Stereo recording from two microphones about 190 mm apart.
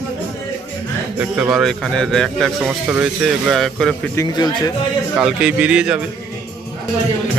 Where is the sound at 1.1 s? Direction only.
5° right (ahead or behind).